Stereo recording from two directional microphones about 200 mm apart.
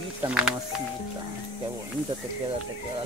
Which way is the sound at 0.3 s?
5° right (ahead or behind).